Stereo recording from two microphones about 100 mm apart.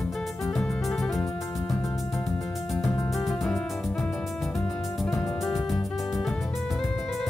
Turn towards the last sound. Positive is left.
turn(degrees=0)  # may be behind; listen again after turning